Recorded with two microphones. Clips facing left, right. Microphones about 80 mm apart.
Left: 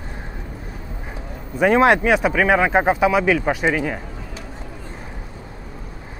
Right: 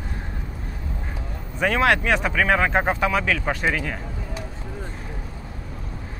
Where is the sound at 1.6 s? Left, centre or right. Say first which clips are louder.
Left 5 dB; left.